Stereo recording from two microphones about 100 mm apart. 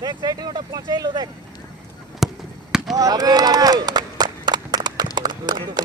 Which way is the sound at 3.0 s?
40° right (ahead or behind).